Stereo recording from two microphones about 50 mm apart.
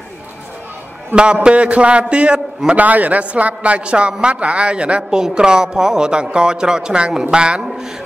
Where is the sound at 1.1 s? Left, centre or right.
Centre.